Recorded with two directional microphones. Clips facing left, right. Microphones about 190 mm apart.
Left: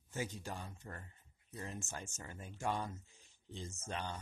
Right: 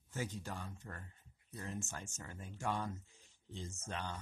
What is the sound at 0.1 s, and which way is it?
Speech, 15° left (ahead or behind).